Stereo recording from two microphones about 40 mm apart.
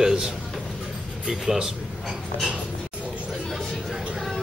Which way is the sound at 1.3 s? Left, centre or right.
Centre.